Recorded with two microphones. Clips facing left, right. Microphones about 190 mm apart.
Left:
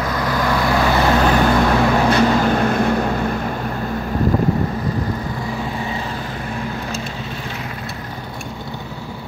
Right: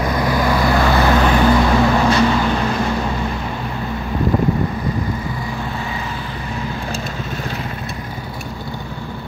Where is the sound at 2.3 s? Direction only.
50° left (ahead or behind).